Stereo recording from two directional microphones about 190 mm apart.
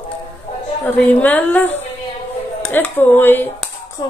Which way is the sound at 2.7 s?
10° left (ahead or behind).